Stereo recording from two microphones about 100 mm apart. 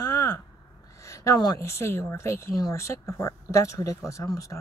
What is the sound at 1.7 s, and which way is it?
Speech, 25° left (ahead or behind).